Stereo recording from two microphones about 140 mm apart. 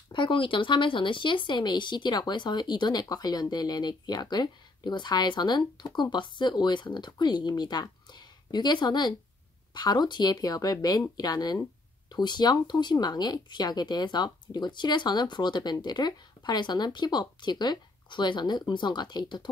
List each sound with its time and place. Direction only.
0.1 s speech: 35° left (ahead or behind)